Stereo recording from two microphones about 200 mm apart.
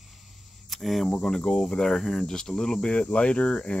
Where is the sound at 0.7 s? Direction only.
Centre (ahead or behind).